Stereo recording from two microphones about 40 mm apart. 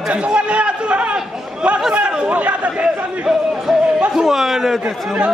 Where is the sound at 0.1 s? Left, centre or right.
Right.